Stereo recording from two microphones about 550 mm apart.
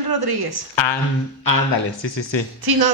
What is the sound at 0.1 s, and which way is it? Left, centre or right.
Speech, right.